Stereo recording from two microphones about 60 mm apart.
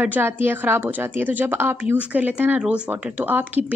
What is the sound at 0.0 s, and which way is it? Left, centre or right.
Speech, right.